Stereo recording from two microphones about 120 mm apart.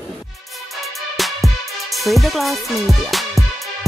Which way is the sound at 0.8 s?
Centre (ahead or behind).